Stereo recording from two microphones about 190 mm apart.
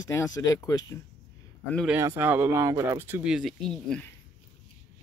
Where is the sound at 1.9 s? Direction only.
10° right (ahead or behind); by 4.1 s 5° left (ahead or behind).